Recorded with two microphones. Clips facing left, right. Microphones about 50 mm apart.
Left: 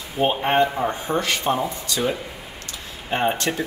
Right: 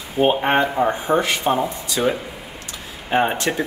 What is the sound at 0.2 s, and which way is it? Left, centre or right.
Speech, centre.